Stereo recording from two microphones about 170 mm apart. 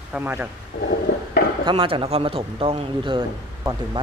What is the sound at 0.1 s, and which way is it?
Speech, 10° right (ahead or behind).